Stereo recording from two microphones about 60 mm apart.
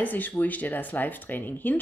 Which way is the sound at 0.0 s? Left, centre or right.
Left.